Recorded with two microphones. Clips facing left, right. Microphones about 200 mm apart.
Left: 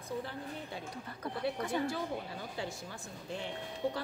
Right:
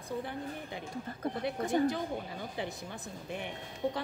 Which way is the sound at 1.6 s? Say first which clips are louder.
Right 8 dB; 45° right (ahead or behind).